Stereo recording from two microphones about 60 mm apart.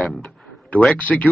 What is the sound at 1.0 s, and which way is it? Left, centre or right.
Speech, left.